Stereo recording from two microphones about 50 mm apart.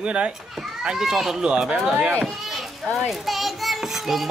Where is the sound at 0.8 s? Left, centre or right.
Centre.